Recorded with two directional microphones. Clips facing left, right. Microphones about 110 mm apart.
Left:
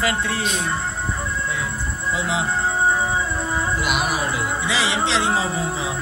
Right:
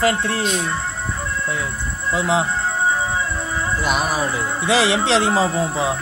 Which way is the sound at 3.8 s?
35° right (ahead or behind).